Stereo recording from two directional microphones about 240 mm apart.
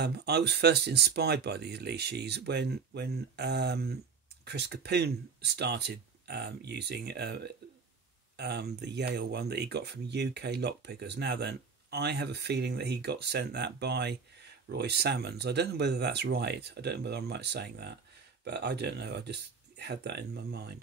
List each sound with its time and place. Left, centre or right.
0.0 s speech: right